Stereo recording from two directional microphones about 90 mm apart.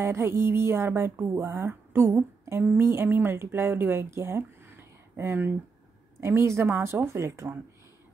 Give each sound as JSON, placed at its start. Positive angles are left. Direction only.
{"t": 0.0, "sound": "speech", "side_deg": -30}